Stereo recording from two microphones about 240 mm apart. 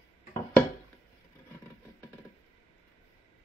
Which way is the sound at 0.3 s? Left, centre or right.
Centre.